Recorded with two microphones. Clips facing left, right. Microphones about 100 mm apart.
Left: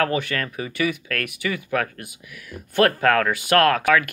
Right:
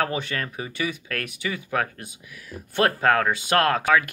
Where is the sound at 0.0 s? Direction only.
30° right (ahead or behind).